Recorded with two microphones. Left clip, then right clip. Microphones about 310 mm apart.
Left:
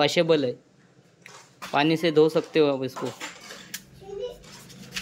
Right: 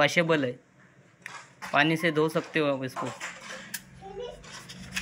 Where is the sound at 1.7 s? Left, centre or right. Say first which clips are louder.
Left 3 dB; centre.